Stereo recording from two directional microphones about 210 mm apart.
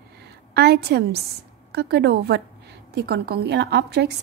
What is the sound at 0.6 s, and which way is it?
A woman's voice, 50° right (ahead or behind).